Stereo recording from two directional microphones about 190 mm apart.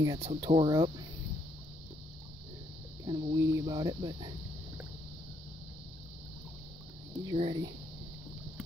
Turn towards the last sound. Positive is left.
turn(degrees=-30)  # may be behind; listen again after turning